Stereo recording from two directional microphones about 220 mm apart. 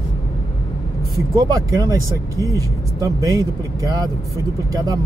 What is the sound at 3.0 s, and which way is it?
Speech, 15° right (ahead or behind).